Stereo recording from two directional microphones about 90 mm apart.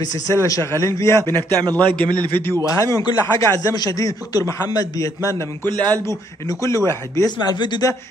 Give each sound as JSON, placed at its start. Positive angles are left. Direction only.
{"t": 0.3, "sound": "speech", "side_deg": 30}
{"t": 1.2, "sound": "a man's voice", "side_deg": -45}
{"t": 2.4, "sound": "a man's voice", "side_deg": 25}
{"t": 3.2, "sound": "speech", "side_deg": 45}
{"t": 5.7, "sound": "a man's voice", "side_deg": -45}
{"t": 6.0, "sound": "speech", "side_deg": 35}
{"t": 7.2, "sound": "speech", "side_deg": 55}